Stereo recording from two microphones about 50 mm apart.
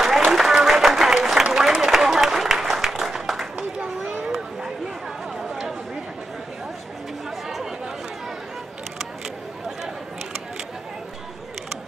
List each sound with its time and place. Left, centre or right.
0.3 s a sound: centre
1.2 s applause: centre
3.5 s a sound: centre
4.2 s run: centre
5.5 s chatter: centre
7.2 s chatter: centre